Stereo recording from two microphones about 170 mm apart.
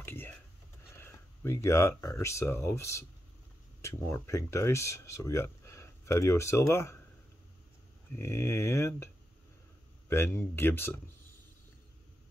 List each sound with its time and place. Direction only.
0.0 s a sound: 15° left (ahead or behind)
0.9 s speech: 15° left (ahead or behind)
8.2 s speech: 15° left (ahead or behind)